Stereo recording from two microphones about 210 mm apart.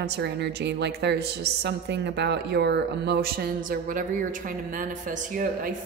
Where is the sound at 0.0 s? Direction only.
55° right (ahead or behind).